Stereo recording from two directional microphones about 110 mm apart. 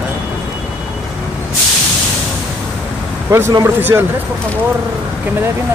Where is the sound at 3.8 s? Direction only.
20° right (ahead or behind).